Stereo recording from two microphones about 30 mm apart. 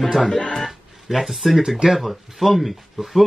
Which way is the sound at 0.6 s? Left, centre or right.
Centre.